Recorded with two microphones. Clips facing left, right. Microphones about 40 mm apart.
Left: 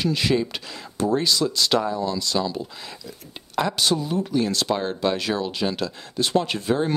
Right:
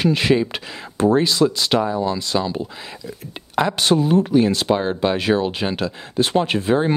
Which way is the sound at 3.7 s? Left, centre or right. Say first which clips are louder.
Right 6 dB; right.